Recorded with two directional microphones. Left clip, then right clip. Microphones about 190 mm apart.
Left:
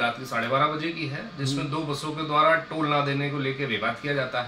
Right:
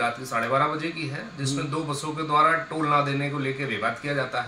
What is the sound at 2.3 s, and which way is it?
Speech, centre (ahead or behind).